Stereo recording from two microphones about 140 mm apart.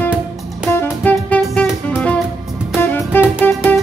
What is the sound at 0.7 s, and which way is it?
Music, 15° left (ahead or behind).